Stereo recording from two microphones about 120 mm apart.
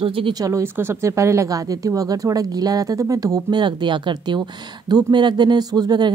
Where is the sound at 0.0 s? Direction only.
50° right (ahead or behind).